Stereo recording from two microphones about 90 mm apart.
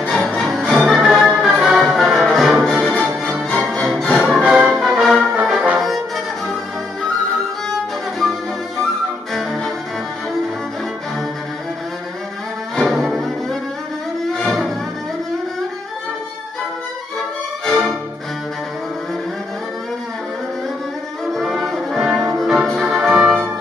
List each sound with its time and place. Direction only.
0.1 s music: centre (ahead or behind)
3.5 s music: centre (ahead or behind)
4.4 s brass instrument: 10° right (ahead or behind)
5.8 s music: centre (ahead or behind)
9.3 s music: 5° left (ahead or behind)
12.7 s brass instrument: centre (ahead or behind)
14.4 s music: centre (ahead or behind)
17.6 s music: 5° left (ahead or behind)
21.3 s brass instrument: centre (ahead or behind)
23.2 s music: 15° right (ahead or behind)